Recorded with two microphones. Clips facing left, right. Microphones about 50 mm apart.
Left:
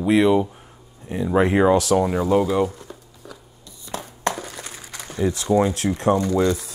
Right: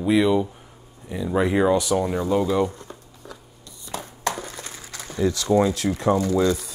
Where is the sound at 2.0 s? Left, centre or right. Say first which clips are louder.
Left 3 dB; centre.